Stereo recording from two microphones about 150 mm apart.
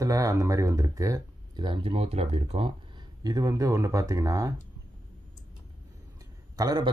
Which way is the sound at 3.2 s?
25° right (ahead or behind).